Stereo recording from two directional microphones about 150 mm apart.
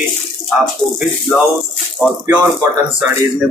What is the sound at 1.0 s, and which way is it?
A man's voice, centre (ahead or behind).